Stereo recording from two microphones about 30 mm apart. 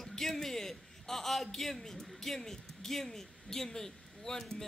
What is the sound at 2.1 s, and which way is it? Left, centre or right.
A man's voice, centre.